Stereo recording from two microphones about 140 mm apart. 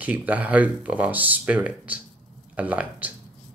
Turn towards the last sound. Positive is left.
turn(degrees=-10)  # may be behind; listen again after turning